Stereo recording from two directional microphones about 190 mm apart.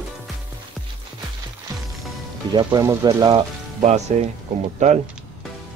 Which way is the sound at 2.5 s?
15° right (ahead or behind).